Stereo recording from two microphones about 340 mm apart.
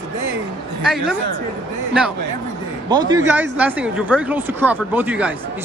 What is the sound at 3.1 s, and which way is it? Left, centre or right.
Speech, centre.